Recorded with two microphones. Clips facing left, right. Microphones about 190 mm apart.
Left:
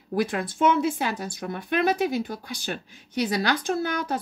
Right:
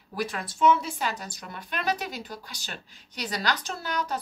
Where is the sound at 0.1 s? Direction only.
55° left (ahead or behind).